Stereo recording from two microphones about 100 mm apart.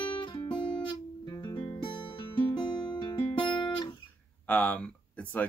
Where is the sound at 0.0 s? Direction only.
55° left (ahead or behind).